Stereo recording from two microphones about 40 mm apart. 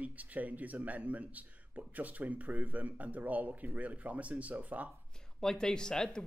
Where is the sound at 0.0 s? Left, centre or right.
Right.